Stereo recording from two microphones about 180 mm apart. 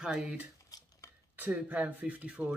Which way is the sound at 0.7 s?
20° left (ahead or behind).